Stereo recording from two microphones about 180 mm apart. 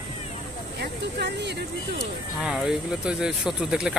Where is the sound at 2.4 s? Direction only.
5° right (ahead or behind).